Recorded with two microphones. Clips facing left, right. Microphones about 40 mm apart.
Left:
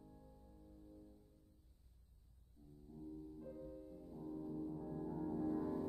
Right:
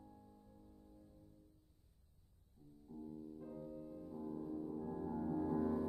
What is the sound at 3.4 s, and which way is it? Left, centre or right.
Music, centre.